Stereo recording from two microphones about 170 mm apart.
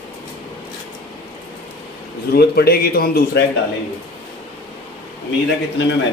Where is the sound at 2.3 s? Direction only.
70° left (ahead or behind).